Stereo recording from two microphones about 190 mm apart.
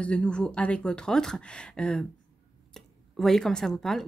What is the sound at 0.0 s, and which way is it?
A woman's voice, 5° left (ahead or behind).